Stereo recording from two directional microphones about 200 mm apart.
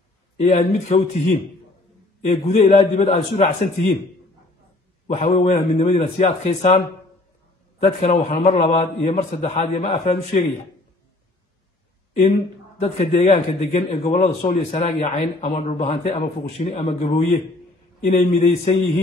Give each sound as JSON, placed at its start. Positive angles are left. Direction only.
{"t": 0.4, "sound": "a man's voice", "side_deg": 35}
{"t": 5.0, "sound": "a man's voice", "side_deg": 35}
{"t": 7.8, "sound": "a man's voice", "side_deg": 30}
{"t": 12.2, "sound": "a man's voice", "side_deg": 35}